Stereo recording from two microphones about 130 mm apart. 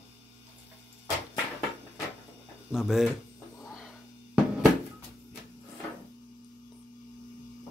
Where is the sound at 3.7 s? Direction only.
5° right (ahead or behind).